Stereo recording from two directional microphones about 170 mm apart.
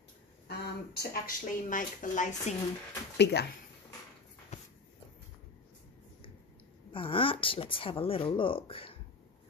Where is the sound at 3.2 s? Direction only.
75° left (ahead or behind).